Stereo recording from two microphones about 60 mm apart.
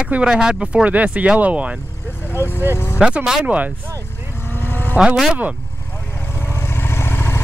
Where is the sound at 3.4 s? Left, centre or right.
Right.